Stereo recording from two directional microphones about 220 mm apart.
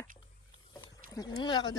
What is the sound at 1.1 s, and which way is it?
Speech, 20° left (ahead or behind).